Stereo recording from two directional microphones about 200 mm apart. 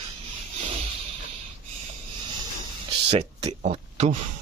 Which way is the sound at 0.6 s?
35° right (ahead or behind).